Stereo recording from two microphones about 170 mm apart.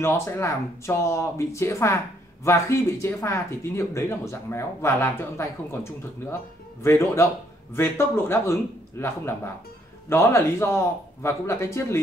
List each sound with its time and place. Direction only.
0.0 s speech: 15° left (ahead or behind)
6.8 s speech: 15° left (ahead or behind)